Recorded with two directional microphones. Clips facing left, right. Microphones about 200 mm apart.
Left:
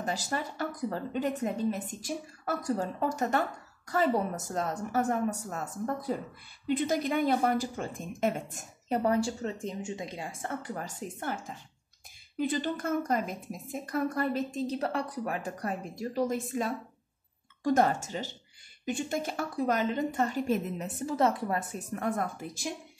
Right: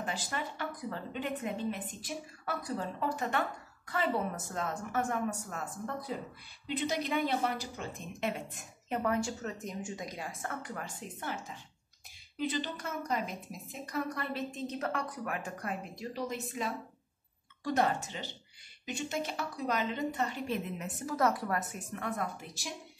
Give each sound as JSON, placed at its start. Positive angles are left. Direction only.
{"t": 0.0, "sound": "a woman's voice", "side_deg": 40}
{"t": 11.0, "sound": "a woman's voice", "side_deg": 50}
{"t": 22.0, "sound": "a woman's voice", "side_deg": 50}